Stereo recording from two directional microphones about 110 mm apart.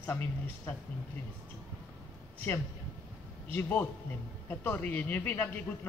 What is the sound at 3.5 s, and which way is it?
A man's voice, 15° left (ahead or behind).